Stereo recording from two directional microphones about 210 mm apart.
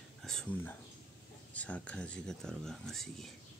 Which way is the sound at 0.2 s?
Centre (ahead or behind).